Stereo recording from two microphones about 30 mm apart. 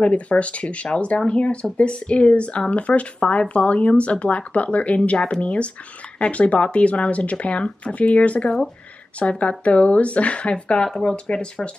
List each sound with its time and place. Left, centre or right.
0.0 s speech: left